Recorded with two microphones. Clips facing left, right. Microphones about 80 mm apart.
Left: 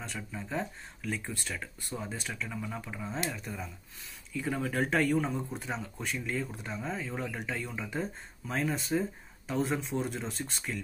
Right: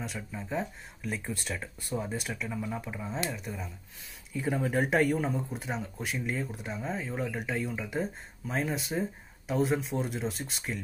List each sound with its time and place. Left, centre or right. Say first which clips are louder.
0.0 s speech: right 2 dB; centre
4.4 s speech: right 3 dB; right; by 10.5 s centre